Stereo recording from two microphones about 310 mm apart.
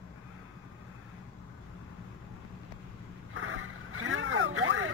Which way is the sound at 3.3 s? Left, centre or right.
Right.